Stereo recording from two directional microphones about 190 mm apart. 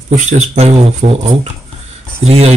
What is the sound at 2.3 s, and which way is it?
Speech, 35° right (ahead or behind).